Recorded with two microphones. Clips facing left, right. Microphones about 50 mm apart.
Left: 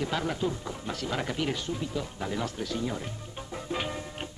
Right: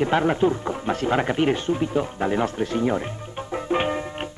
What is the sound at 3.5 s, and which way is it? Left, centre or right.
Music, right.